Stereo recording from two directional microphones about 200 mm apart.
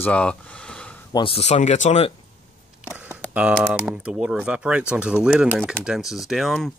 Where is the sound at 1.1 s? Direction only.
25° left (ahead or behind).